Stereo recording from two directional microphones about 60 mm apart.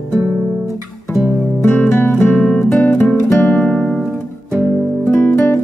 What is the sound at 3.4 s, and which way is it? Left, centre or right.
Music, left.